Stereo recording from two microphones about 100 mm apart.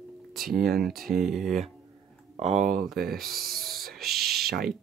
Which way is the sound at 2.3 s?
90° right.